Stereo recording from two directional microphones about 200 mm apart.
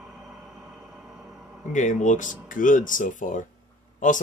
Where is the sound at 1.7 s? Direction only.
35° left (ahead or behind).